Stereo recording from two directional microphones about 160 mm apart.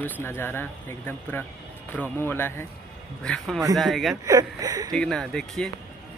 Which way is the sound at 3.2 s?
5° left (ahead or behind).